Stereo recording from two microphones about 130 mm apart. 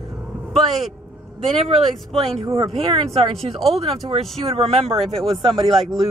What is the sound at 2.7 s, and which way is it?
Speech, 50° right (ahead or behind).